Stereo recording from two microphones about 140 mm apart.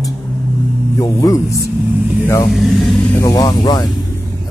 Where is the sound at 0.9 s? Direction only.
25° left (ahead or behind).